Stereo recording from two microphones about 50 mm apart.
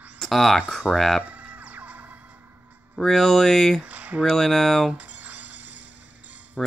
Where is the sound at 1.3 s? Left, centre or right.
Right.